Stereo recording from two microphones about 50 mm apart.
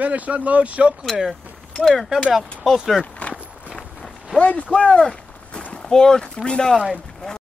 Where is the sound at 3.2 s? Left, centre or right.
Left.